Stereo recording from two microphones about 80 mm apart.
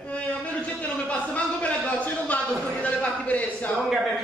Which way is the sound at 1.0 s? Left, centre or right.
Centre.